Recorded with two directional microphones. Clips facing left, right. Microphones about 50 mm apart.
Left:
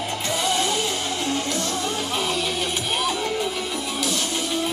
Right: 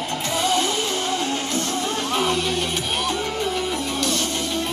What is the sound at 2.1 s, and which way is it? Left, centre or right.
Music, centre.